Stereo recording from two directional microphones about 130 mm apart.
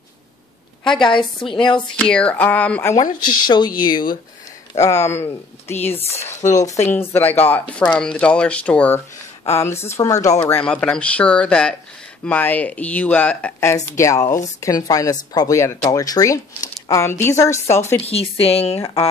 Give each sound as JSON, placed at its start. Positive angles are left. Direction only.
{"t": 0.8, "sound": "a woman's voice", "side_deg": 5}
{"t": 1.1, "sound": "speech", "side_deg": 40}
{"t": 2.0, "sound": "speech", "side_deg": 10}
{"t": 3.0, "sound": "speech", "side_deg": 35}
{"t": 5.0, "sound": "speech", "side_deg": 20}
{"t": 10.4, "sound": "speech", "side_deg": 10}
{"t": 18.0, "sound": "speech", "side_deg": 50}